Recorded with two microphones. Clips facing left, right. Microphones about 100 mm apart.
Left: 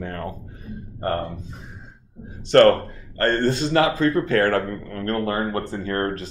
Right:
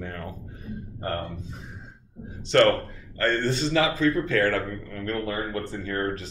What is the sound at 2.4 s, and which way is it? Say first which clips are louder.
A man's voice: left 6 dB; 50° left (ahead or behind).